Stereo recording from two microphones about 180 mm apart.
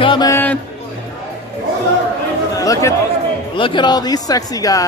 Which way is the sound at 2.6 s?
20° left (ahead or behind).